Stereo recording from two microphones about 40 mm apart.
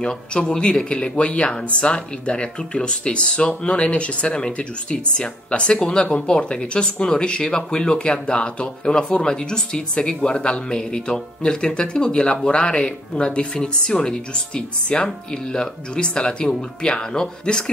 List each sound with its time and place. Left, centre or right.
0.0 s speech: left